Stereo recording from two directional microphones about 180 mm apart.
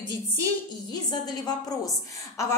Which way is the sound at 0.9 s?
20° left (ahead or behind).